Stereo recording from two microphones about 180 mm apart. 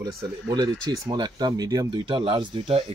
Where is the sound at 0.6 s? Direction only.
20° right (ahead or behind).